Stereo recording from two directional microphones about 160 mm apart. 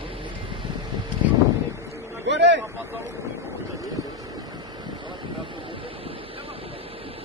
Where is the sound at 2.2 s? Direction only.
90° right.